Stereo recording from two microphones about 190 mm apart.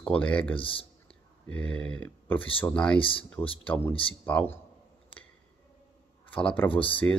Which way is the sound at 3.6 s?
10° left (ahead or behind).